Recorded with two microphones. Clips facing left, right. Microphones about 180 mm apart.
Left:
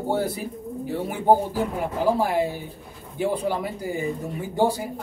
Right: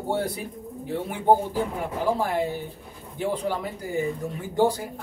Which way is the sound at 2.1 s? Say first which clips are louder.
Left 3 dB; 10° left (ahead or behind).